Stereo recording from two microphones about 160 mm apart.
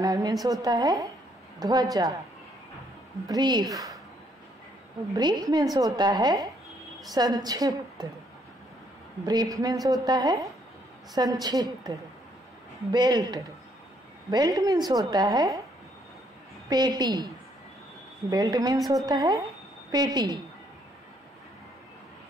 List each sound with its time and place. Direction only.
0.0 s a woman's voice: 25° right (ahead or behind)
3.3 s a woman's voice: 25° right (ahead or behind)
5.1 s a woman's voice: 25° right (ahead or behind)
9.2 s a woman's voice: 25° right (ahead or behind)
12.9 s a woman's voice: 25° right (ahead or behind)
16.6 s a woman's voice: 25° right (ahead or behind)
18.3 s a woman's voice: 25° right (ahead or behind)